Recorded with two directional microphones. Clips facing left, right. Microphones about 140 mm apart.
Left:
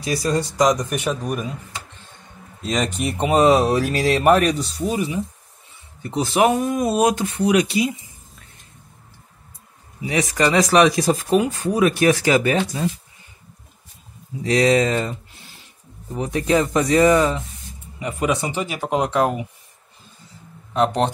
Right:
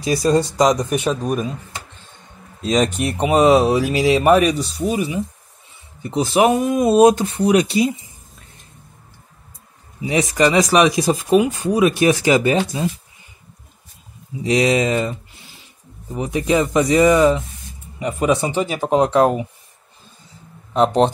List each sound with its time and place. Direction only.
0.0 s speech: 25° right (ahead or behind)
2.6 s speech: 20° right (ahead or behind)
10.0 s speech: 20° right (ahead or behind)
14.4 s speech: 15° right (ahead or behind)
17.9 s speech: 30° right (ahead or behind)
20.7 s speech: 25° right (ahead or behind)